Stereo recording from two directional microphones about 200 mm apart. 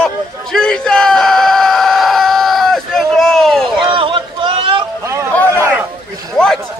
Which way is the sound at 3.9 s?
25° right (ahead or behind).